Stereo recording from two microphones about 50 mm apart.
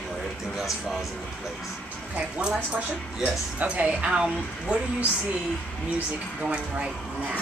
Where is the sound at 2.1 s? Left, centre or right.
Right.